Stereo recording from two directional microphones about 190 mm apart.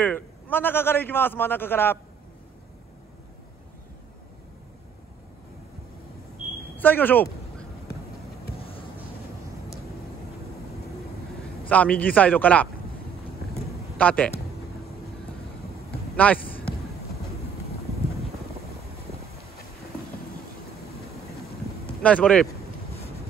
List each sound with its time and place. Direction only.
0.0 s a man's voice: 10° left (ahead or behind)
6.8 s speech: 10° left (ahead or behind)
8.5 s a sound: 30° left (ahead or behind)
11.7 s a man's voice: 10° left (ahead or behind)
13.9 s a man's voice: 5° left (ahead or behind)
16.2 s a man's voice: 10° left (ahead or behind)
22.0 s a man's voice: 5° left (ahead or behind)